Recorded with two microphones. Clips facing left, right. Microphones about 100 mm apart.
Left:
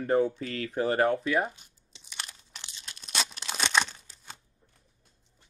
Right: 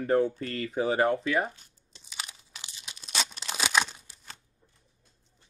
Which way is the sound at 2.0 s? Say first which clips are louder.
Right 1 dB; centre (ahead or behind).